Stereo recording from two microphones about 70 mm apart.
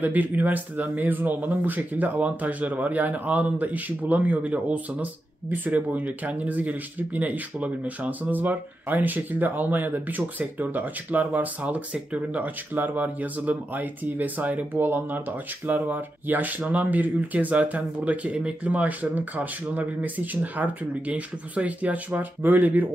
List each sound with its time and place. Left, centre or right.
0.0 s speech: right